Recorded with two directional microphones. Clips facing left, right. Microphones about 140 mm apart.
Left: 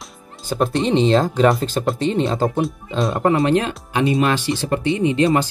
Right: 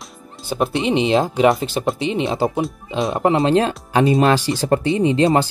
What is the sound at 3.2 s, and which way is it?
Speech, 25° right (ahead or behind).